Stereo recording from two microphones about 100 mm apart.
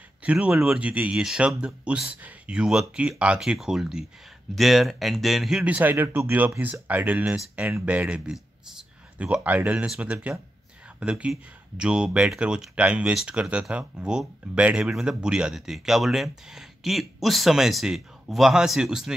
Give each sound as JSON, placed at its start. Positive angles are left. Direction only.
{"t": 0.2, "sound": "speech", "side_deg": -15}
{"t": 5.6, "sound": "speech", "side_deg": -15}